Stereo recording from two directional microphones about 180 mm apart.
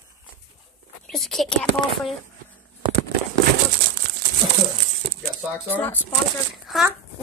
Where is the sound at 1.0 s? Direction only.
Centre (ahead or behind).